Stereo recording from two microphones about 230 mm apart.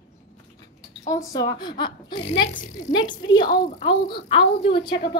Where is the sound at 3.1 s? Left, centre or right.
Centre.